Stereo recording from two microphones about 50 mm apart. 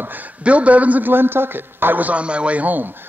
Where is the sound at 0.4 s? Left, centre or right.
Right.